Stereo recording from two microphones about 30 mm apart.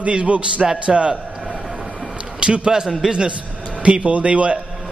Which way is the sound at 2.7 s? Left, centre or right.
Centre.